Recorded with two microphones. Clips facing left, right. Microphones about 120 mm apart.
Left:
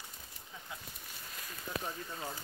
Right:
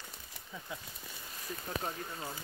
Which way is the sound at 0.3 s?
85° right.